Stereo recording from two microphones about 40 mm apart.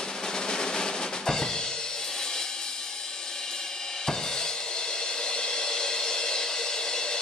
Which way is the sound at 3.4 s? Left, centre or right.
Centre.